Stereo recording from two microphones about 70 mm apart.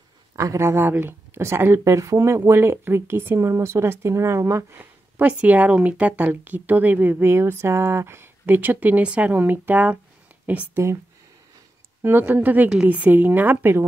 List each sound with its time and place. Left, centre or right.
0.4 s speech: right
4.6 s speech: right
10.7 s speech: right
12.0 s speech: right